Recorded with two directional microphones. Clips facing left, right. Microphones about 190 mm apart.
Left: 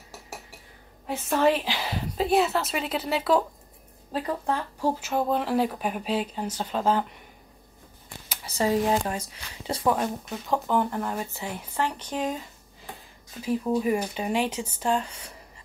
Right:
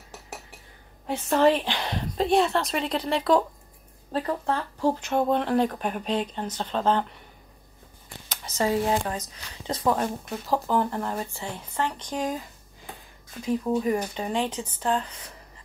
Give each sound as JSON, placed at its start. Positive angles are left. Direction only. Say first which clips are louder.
{"t": 1.0, "sound": "a woman's voice", "louder": "right 2 dB", "side_deg": 5}
{"t": 8.3, "sound": "speech", "louder": "even", "side_deg": 10}
{"t": 10.4, "sound": "a woman's voice", "louder": "even", "side_deg": 0}
{"t": 13.7, "sound": "speech", "louder": "even", "side_deg": 10}